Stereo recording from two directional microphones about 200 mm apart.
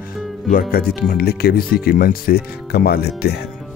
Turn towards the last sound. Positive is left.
turn(degrees=55)  # may be behind; listen again after turning